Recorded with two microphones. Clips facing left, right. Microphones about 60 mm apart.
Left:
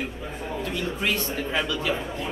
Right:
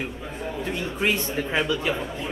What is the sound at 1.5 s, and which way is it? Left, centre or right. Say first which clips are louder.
Speech: right 2 dB; right.